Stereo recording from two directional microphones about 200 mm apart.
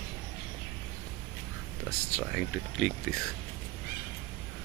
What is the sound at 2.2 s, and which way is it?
Speech, 5° left (ahead or behind).